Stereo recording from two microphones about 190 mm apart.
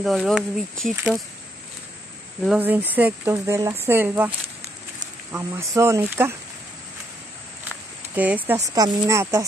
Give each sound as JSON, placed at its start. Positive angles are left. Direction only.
{"t": 0.0, "sound": "speech", "side_deg": 0}
{"t": 0.9, "sound": "speech", "side_deg": -10}
{"t": 2.4, "sound": "speech", "side_deg": -5}
{"t": 5.3, "sound": "speech", "side_deg": -15}
{"t": 8.1, "sound": "speech", "side_deg": -10}
{"t": 8.6, "sound": "speech", "side_deg": -20}